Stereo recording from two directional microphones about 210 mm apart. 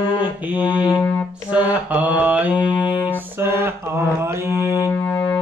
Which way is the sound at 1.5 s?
5° right (ahead or behind).